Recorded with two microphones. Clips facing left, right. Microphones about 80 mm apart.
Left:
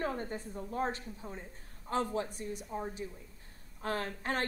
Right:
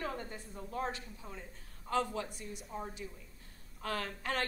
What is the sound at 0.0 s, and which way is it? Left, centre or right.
A woman's voice, left.